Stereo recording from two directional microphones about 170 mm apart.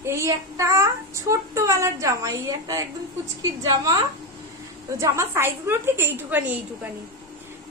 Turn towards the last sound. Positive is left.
turn(degrees=-10)  # may be behind; listen again after turning